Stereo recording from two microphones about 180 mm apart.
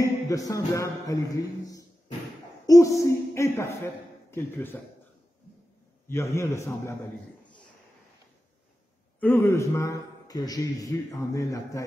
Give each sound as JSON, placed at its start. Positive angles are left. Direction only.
{"t": 0.0, "sound": "a man's voice", "side_deg": 20}
{"t": 6.0, "sound": "a man's voice", "side_deg": 15}
{"t": 9.2, "sound": "a man's voice", "side_deg": 10}